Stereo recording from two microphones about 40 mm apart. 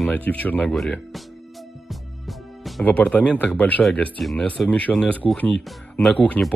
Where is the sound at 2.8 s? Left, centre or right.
Left.